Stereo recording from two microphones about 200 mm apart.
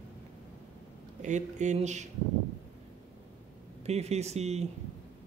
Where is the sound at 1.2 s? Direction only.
35° right (ahead or behind).